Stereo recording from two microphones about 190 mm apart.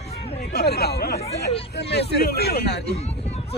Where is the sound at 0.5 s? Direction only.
55° left (ahead or behind).